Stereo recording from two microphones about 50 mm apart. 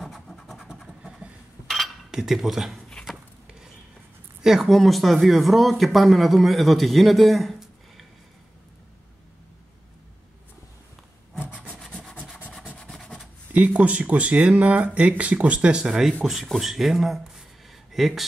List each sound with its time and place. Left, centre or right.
0.0 s scratch: centre
0.8 s vehicle: centre
2.0 s speech: centre
4.4 s speech: centre
12.0 s rub: centre
12.9 s writing: centre
13.5 s speech: right
16.5 s speech: centre
17.2 s a sound: centre